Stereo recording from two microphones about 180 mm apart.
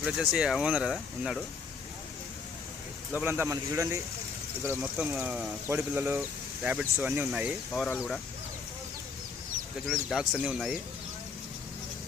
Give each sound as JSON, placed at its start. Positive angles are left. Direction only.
{"t": 0.0, "sound": "speech", "side_deg": -5}
{"t": 3.2, "sound": "speech", "side_deg": -15}
{"t": 9.8, "sound": "speech", "side_deg": 0}